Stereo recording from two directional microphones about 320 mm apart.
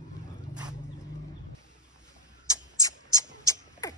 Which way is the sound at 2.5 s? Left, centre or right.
Centre.